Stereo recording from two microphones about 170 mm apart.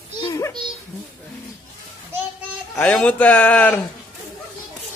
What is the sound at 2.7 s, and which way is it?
A man's voice, 10° left (ahead or behind).